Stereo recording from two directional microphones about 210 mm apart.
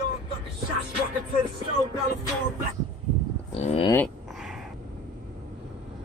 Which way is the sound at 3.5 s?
30° left (ahead or behind).